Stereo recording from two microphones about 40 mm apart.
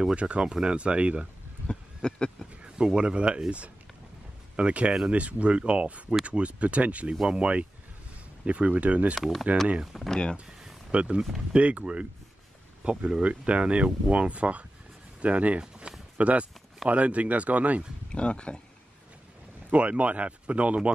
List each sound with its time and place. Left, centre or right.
0.1 s speech: right
1.7 s a sound: left
2.6 s speech: right
9.9 s speech: centre
10.9 s speech: right
15.9 s a sound: right
16.2 s speech: right
18.1 s speech: left
19.7 s speech: right